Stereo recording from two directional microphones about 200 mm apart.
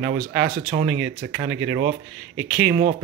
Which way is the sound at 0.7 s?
60° right (ahead or behind).